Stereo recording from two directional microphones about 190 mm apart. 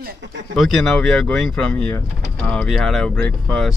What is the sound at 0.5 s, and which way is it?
Speech, centre (ahead or behind).